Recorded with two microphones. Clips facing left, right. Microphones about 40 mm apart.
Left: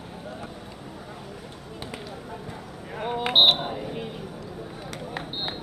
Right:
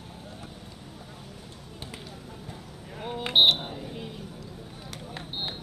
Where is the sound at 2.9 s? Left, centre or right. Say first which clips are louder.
Left 2 dB; left.